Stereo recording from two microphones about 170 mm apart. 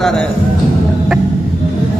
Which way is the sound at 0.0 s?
5° left (ahead or behind).